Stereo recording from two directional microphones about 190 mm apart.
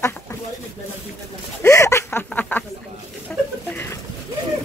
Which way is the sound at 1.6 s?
15° left (ahead or behind).